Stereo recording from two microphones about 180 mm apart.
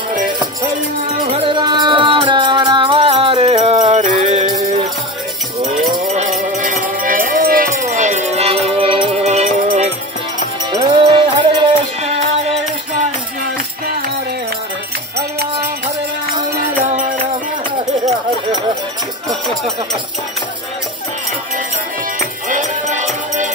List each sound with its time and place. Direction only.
1.2 s music: 30° right (ahead or behind)
6.6 s music: 45° right (ahead or behind)
10.7 s music: 20° right (ahead or behind)
16.8 s music: 45° right (ahead or behind)
22.5 s music: 45° right (ahead or behind)